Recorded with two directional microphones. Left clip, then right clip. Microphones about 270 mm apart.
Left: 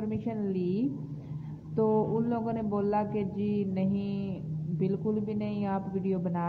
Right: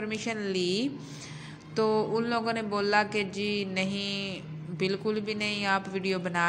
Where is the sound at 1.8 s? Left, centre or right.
Centre.